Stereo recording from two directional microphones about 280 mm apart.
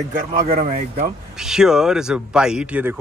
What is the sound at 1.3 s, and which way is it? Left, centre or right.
Speech, centre.